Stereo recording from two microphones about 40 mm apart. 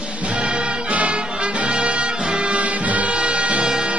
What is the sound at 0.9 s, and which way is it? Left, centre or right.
Music, right.